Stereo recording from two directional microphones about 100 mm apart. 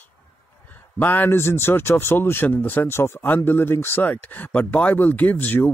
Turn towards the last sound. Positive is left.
turn(degrees=20)  # may be behind; listen again after turning